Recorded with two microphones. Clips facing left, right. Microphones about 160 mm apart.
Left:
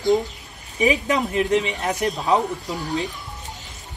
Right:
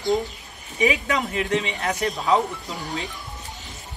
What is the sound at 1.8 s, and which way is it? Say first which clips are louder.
Speech: left 2 dB; 15° left (ahead or behind).